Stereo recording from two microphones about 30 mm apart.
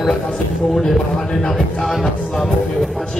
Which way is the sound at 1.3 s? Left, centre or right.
Centre.